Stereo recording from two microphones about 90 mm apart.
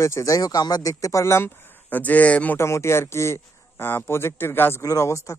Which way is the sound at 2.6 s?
30° left (ahead or behind).